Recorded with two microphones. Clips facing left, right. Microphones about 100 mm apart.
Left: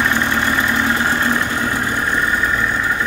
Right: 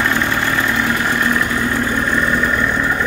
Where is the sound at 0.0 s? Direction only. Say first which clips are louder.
Even; 20° left (ahead or behind).